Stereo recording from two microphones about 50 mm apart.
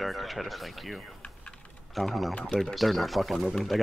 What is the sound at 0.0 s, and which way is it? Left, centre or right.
Speech, centre.